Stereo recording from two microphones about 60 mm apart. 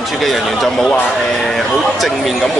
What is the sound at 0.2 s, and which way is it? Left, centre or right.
Speech, centre.